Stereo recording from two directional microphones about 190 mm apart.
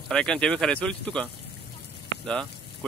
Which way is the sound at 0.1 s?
5° left (ahead or behind).